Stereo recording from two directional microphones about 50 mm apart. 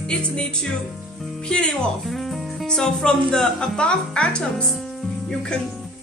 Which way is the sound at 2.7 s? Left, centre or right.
Centre.